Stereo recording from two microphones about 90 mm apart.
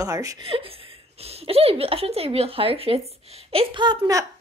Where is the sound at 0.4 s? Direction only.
90° right.